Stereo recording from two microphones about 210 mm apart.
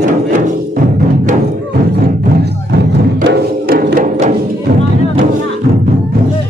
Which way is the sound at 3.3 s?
50° right (ahead or behind).